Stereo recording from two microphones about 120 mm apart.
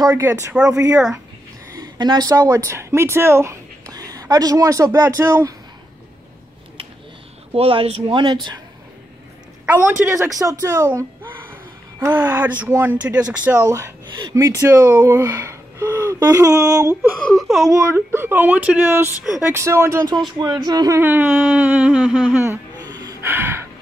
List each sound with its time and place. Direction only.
0.0 s speech: 25° right (ahead or behind)
0.6 s speech: 10° right (ahead or behind)
1.8 s speech: 35° right (ahead or behind)
7.5 s speech: 55° right (ahead or behind)
9.7 s speech: 15° right (ahead or behind)
10.4 s speech: 25° right (ahead or behind)
12.0 s speech: 20° right (ahead or behind)
13.6 s speech: 25° right (ahead or behind)
17.2 s speech: 5° left (ahead or behind)
17.9 s speech: 20° right (ahead or behind)
21.0 s speech: 15° right (ahead or behind)
22.4 s a sound: 25° right (ahead or behind)
22.8 s gasp: 35° right (ahead or behind)
23.2 s gasp: 20° right (ahead or behind)